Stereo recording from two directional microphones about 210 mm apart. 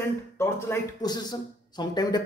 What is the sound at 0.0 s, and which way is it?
A man's voice, 10° left (ahead or behind).